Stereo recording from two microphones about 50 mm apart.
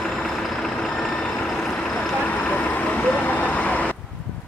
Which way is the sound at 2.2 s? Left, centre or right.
Left.